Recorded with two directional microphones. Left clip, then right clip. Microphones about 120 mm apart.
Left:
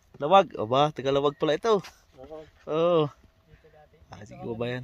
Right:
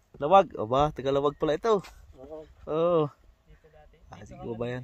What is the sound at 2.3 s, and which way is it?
Speech, 20° left (ahead or behind).